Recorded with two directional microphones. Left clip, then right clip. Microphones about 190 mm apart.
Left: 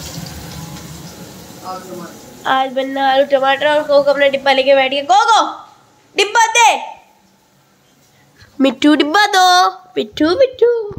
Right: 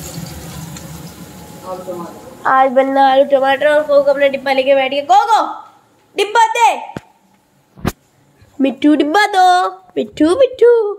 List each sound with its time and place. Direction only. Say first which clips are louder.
2.4 s a woman's voice: right 5 dB; 5° right (ahead or behind)
2.9 s a woman's voice: right 3 dB; 25° right (ahead or behind); by 6.8 s 5° right (ahead or behind)
8.5 s speech: left 1 dB; 5° left (ahead or behind); by 10.5 s 15° right (ahead or behind)